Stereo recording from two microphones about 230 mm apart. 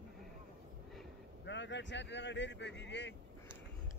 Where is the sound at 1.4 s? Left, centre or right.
Left.